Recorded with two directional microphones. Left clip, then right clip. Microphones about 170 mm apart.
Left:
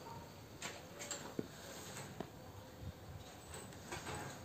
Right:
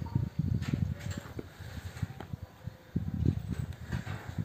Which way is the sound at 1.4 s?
15° right (ahead or behind).